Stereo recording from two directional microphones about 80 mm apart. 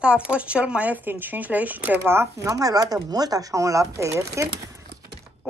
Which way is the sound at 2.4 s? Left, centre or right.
Right.